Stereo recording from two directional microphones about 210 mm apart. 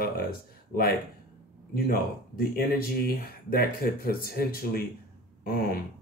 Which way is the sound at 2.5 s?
45° left (ahead or behind).